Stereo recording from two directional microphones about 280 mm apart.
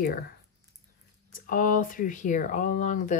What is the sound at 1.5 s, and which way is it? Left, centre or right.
Speech, left.